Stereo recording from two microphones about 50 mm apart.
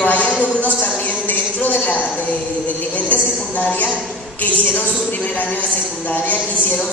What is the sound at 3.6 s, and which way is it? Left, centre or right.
Speech, left.